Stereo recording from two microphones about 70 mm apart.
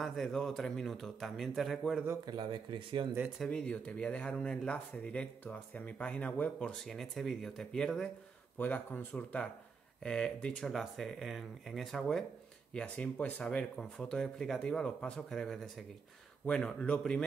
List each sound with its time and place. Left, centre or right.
0.0 s a man's voice: centre
2.2 s speech: right
3.4 s speech: centre
6.7 s a man's voice: centre
8.5 s a man's voice: left; by 12.3 s centre
12.7 s speech: centre